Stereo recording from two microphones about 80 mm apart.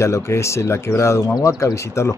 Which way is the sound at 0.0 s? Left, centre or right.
Left.